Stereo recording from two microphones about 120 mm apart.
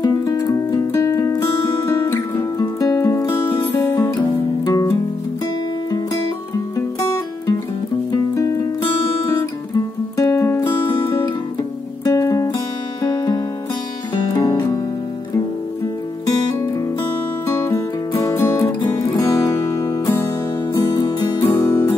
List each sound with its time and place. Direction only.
0.0 s music: 30° left (ahead or behind)
8.1 s music: 30° left (ahead or behind)
10.2 s music: 25° left (ahead or behind)
10.8 s music: 45° left (ahead or behind)
12.1 s music: 30° left (ahead or behind)
17.5 s music: 25° left (ahead or behind)
21.4 s music: 20° left (ahead or behind)